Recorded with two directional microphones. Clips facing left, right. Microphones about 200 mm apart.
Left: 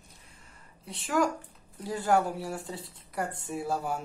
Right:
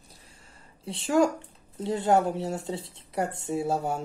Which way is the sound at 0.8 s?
30° right (ahead or behind).